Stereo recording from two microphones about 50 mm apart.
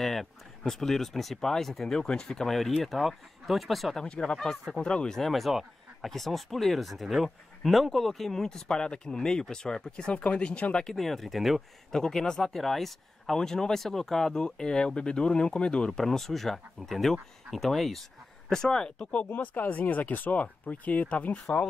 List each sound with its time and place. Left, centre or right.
0.0 s speech: centre
1.9 s speech: centre
4.1 s speech: centre
5.3 s speech: centre; by 10.9 s left
10.9 s speech: centre
11.9 s speech: centre
16.1 s speech: centre
19.2 s speech: left